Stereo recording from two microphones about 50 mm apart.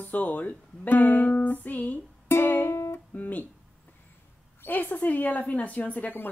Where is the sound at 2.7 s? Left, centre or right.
Left.